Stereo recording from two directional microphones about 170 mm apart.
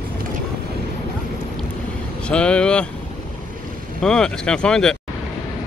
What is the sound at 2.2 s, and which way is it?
Speech, 5° left (ahead or behind).